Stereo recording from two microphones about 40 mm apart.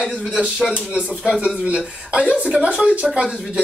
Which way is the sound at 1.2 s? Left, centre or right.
Right.